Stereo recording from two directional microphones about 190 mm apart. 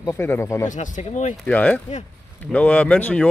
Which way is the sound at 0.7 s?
40° left (ahead or behind).